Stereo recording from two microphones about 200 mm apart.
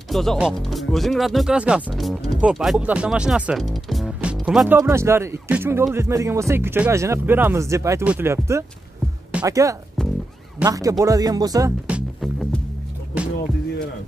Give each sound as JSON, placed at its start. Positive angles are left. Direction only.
{"t": 0.1, "sound": "speech", "side_deg": 0}
{"t": 10.0, "sound": "music", "side_deg": 5}
{"t": 10.6, "sound": "speech", "side_deg": -15}
{"t": 11.9, "sound": "music", "side_deg": 0}